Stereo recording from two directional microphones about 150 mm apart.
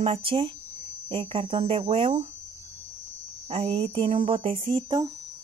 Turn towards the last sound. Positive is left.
turn(degrees=-35)  # may be behind; listen again after turning